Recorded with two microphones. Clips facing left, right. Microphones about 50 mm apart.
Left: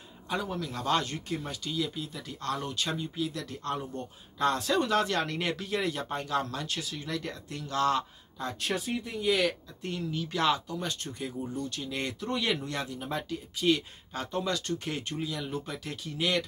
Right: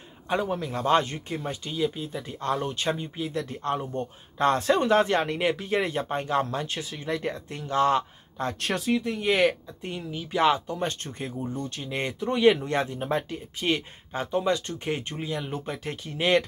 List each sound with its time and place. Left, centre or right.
0.3 s speech: right
5.7 s speech: right
8.4 s speech: right
9.2 s speech: right
9.8 s speech: centre; by 16.4 s right